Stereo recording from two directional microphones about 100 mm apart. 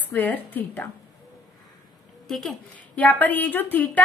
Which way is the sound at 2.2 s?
Centre (ahead or behind).